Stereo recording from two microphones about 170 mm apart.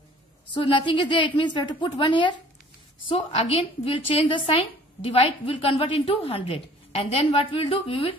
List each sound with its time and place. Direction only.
0.5 s a woman's voice: 30° left (ahead or behind)